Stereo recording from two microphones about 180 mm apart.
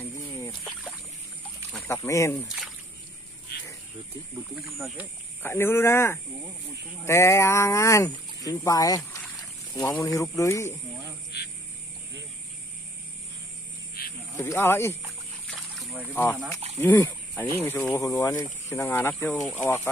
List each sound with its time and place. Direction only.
0.0 s a sound: 15° left (ahead or behind)
2.0 s speech: 15° left (ahead or behind)
4.7 s speech: centre (ahead or behind)
5.4 s speech: 10° left (ahead or behind)
9.4 s boat: 20° left (ahead or behind)
10.3 s speech: 15° left (ahead or behind)
11.3 s speech: 65° left (ahead or behind)
14.6 s speech: 15° left (ahead or behind)
16.1 s speech: 10° left (ahead or behind)